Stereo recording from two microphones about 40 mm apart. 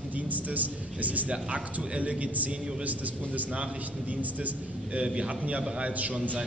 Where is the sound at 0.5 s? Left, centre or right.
Right.